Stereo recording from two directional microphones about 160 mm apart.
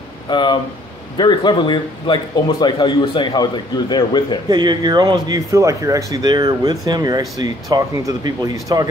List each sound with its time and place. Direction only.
0.3 s a man's voice: 30° left (ahead or behind)
4.5 s speech: 25° right (ahead or behind)